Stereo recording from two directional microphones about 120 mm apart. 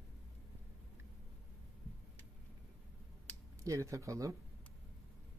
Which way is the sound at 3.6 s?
25° right (ahead or behind).